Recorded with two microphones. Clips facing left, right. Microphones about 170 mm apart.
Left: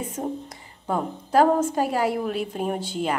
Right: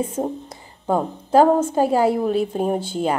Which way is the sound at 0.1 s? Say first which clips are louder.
Right 4 dB; 30° right (ahead or behind).